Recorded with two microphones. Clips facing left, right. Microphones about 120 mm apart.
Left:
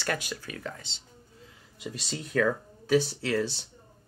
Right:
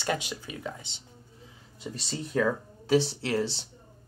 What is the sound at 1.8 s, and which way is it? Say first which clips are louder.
Speech: right 1 dB; 30° right (ahead or behind).